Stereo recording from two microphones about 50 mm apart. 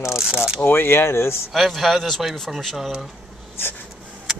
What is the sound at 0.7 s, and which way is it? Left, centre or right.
Speech, left.